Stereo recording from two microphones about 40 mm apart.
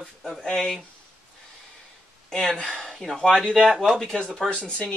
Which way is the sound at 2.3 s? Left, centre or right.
Centre.